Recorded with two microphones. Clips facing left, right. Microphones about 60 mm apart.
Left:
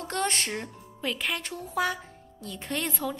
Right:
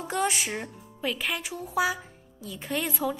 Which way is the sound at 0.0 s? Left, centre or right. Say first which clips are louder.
Right 2 dB; centre.